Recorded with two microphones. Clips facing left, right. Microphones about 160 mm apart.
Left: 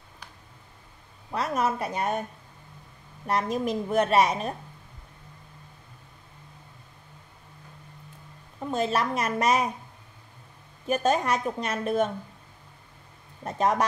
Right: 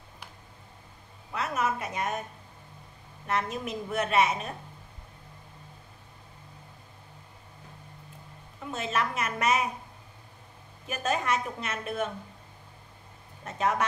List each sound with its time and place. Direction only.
1.3 s a woman's voice: 35° left (ahead or behind)
3.3 s a woman's voice: 35° left (ahead or behind)
8.6 s a woman's voice: 35° left (ahead or behind)
10.9 s a woman's voice: 30° left (ahead or behind)
13.4 s a woman's voice: 35° left (ahead or behind)